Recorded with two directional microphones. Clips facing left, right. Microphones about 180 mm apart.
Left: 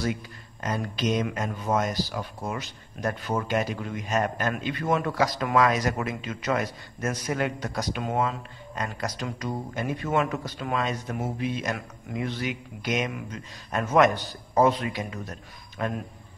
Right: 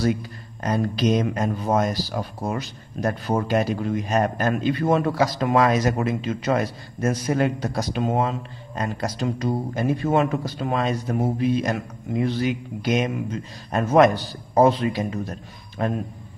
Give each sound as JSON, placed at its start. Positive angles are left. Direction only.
{"t": 0.6, "sound": "speech", "side_deg": -35}